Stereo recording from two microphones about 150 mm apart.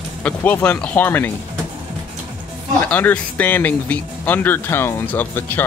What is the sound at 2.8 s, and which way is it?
Speech, 10° left (ahead or behind).